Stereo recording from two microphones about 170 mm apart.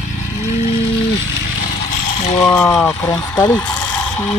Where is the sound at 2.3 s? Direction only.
15° left (ahead or behind).